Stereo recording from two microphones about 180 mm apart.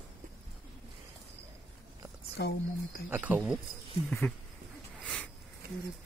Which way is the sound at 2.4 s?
65° left (ahead or behind).